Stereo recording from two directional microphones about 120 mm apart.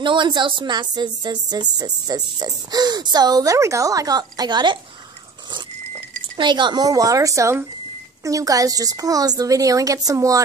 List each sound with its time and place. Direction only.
0.0 s a woman's voice: 40° right (ahead or behind)
6.3 s a woman's voice: 40° right (ahead or behind)